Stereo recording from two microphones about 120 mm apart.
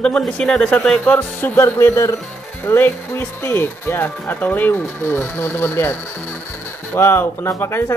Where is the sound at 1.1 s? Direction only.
20° left (ahead or behind).